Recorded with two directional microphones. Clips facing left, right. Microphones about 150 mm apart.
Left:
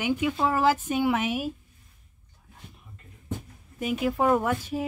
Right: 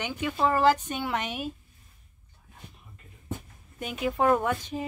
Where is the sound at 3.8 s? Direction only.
5° left (ahead or behind).